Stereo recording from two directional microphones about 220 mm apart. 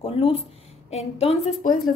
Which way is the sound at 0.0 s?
25° left (ahead or behind).